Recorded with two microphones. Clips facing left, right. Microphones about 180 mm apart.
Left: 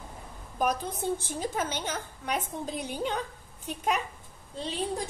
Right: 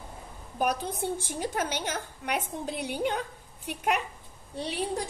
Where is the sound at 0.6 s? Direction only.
10° right (ahead or behind).